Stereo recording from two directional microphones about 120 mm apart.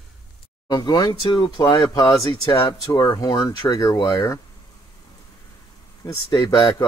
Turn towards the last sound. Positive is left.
turn(degrees=35)  # may be behind; listen again after turning